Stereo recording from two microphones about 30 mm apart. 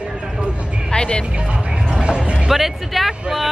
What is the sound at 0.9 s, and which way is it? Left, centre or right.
Music, left.